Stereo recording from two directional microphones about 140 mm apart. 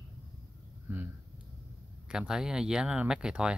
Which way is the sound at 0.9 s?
15° right (ahead or behind).